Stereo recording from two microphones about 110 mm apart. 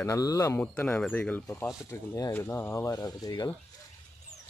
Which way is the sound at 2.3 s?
20° left (ahead or behind).